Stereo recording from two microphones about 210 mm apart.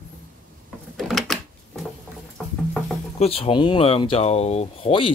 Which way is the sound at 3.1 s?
30° left (ahead or behind).